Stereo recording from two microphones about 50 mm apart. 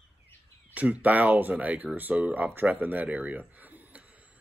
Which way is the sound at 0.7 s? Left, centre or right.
Right.